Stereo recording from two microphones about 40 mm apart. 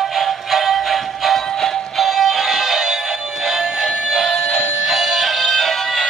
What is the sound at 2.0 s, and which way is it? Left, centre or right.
Music, centre.